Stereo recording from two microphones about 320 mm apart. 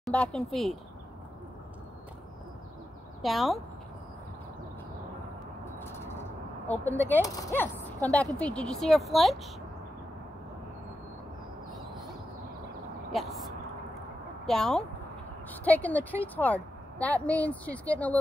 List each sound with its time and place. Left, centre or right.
0.0 s a woman's voice: centre
3.2 s a woman's voice: centre
5.8 s a sound: centre
7.1 s a woman's voice: centre
13.1 s a woman's voice: centre